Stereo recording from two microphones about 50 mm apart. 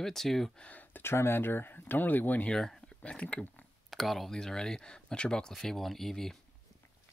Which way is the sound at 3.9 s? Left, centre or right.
Centre.